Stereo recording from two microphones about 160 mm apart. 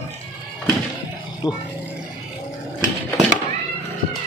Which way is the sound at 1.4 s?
25° left (ahead or behind).